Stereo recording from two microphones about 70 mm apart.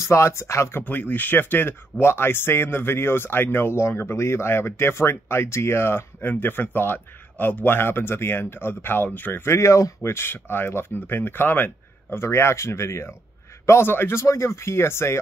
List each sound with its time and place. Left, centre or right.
0.0 s speech: left
0.8 s speech: left
10.1 s speech: left
14.2 s speech: left